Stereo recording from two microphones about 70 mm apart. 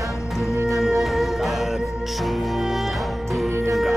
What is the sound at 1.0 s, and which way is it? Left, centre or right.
Music, centre.